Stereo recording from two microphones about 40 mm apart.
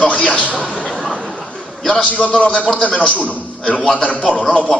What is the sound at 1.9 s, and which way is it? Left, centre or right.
A man's voice, left.